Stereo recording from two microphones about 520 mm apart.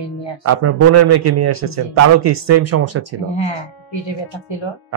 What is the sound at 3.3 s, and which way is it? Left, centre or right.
Speech, left.